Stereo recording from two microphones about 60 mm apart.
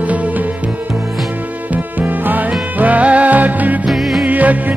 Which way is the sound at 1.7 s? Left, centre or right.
Right.